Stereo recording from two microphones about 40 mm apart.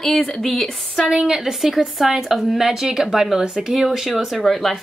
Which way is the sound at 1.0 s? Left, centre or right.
Right.